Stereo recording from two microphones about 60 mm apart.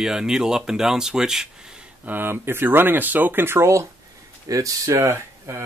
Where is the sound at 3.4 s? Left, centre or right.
Right.